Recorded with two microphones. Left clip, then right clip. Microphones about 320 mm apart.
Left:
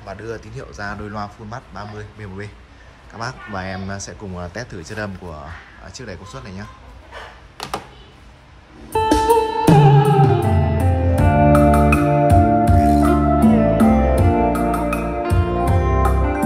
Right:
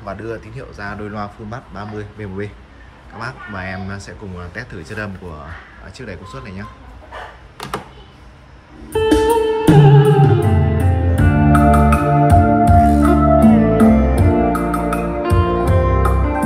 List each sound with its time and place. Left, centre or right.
0.0 s speech: centre
8.9 s music: left
11.9 s music: centre